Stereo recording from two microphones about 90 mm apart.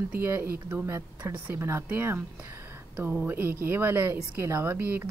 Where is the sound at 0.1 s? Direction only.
25° right (ahead or behind).